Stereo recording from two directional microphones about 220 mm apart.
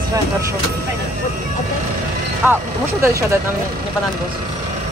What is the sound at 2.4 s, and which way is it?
Speech, 10° right (ahead or behind).